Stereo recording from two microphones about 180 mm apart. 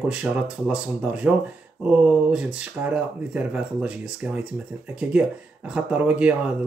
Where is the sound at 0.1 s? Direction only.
5° right (ahead or behind).